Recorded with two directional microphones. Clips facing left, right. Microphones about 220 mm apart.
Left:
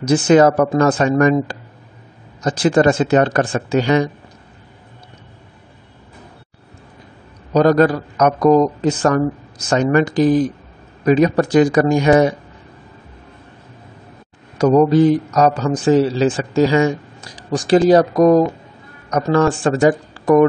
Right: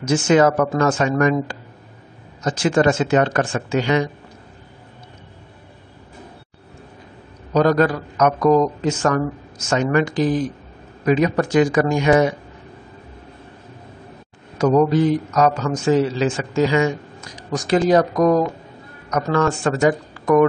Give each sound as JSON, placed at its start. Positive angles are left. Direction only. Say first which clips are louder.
{"t": 0.0, "sound": "a man's voice", "louder": "left 4 dB", "side_deg": 35}
{"t": 2.4, "sound": "a man's voice", "louder": "left 3 dB", "side_deg": 35}
{"t": 7.5, "sound": "a man's voice", "louder": "left 3 dB", "side_deg": 35}
{"t": 14.6, "sound": "a man's voice", "louder": "left 4 dB", "side_deg": 35}